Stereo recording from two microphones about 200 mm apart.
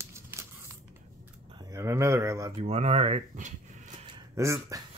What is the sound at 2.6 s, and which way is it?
Speech, 30° right (ahead or behind).